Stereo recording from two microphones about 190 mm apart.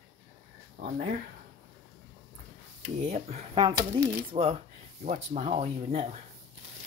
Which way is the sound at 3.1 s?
35° right (ahead or behind).